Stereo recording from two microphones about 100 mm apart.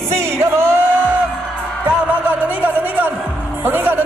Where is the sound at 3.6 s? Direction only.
20° right (ahead or behind).